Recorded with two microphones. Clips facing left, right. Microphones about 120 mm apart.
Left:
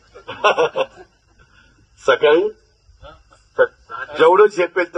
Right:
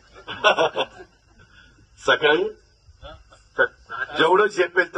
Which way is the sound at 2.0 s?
40° left (ahead or behind).